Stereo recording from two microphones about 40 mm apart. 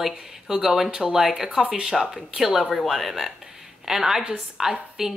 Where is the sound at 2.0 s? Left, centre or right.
Centre.